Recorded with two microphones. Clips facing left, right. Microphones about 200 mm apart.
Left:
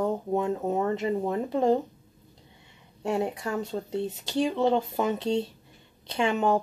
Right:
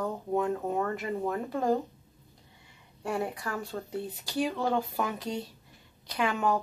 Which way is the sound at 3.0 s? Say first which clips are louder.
Left 4 dB; 25° left (ahead or behind).